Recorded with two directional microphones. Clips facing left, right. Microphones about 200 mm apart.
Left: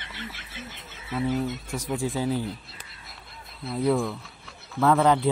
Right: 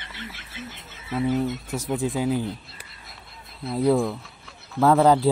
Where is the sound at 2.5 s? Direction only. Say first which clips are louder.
Right 2 dB; centre (ahead or behind).